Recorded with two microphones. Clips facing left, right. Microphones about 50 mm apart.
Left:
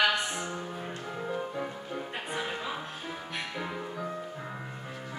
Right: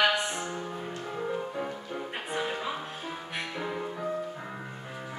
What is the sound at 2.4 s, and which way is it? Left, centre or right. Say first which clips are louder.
Music: right 3 dB; centre.